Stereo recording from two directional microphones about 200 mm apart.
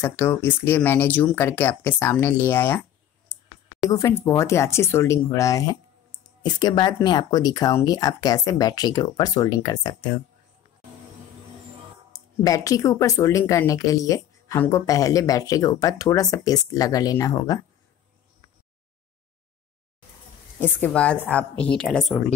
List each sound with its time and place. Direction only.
0.0 s speech: 10° left (ahead or behind)
12.1 s speech: 15° left (ahead or behind)
20.6 s a woman's voice: 5° left (ahead or behind)